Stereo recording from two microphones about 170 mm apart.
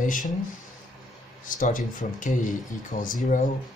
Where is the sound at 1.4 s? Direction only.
50° left (ahead or behind).